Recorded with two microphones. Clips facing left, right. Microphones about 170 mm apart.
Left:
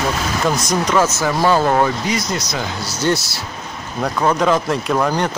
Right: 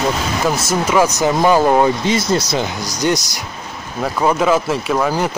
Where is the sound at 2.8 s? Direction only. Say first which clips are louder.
Right 1 dB; 15° right (ahead or behind).